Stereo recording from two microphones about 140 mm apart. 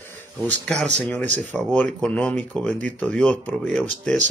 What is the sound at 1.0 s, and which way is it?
Speech, 5° left (ahead or behind).